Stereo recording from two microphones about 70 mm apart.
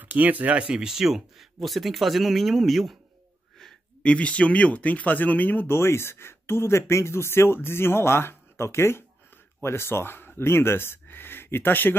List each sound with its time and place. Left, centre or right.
0.0 s speech: right; by 3.0 s centre
4.0 s speech: centre